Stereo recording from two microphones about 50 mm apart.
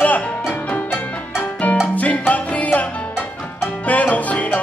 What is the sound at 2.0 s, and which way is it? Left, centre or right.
Music, left.